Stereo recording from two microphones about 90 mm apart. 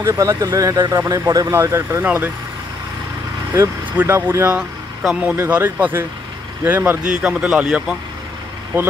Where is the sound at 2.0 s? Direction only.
20° right (ahead or behind).